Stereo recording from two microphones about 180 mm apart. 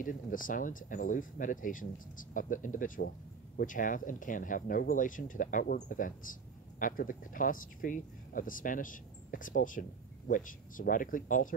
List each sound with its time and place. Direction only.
0.0 s speech: 50° left (ahead or behind)